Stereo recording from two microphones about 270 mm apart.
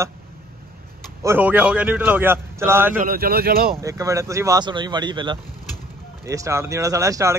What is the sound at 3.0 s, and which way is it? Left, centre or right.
Speech, right.